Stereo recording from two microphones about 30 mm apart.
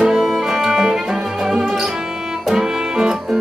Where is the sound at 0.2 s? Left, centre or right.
Centre.